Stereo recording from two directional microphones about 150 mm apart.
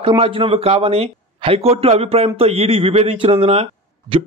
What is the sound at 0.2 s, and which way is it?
A man's voice, 40° right (ahead or behind).